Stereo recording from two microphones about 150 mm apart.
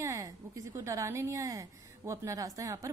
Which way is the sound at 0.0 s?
20° right (ahead or behind).